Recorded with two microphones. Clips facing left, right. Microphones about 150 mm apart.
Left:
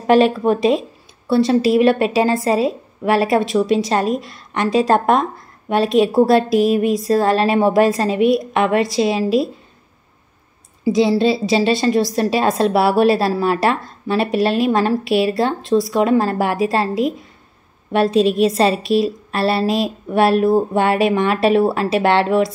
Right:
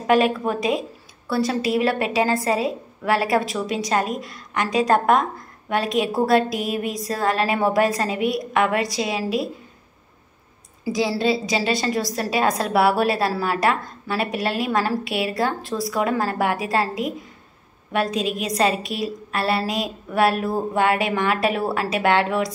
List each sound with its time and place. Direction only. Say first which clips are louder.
0.0 s a woman's voice: left 5 dB; 30° left (ahead or behind)
10.8 s a woman's voice: left 7 dB; 25° left (ahead or behind)